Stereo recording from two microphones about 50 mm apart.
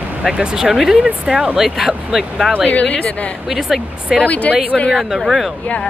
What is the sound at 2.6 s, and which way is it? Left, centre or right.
Speech, left.